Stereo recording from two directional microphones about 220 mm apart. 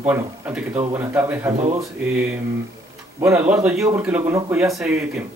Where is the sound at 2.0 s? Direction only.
5° right (ahead or behind).